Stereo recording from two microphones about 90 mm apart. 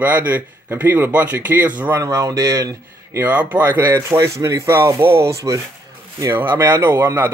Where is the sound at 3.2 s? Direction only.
20° right (ahead or behind).